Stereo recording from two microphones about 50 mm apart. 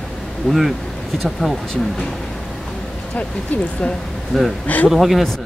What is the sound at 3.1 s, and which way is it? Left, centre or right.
Speech, left.